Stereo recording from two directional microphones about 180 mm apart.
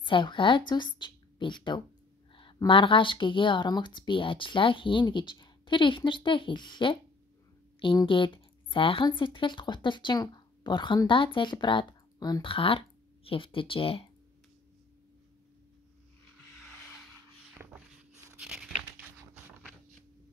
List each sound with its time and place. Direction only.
0.0 s speech: 25° left (ahead or behind)
17.6 s a sound: 10° right (ahead or behind)
18.3 s crumpling: 5° right (ahead or behind)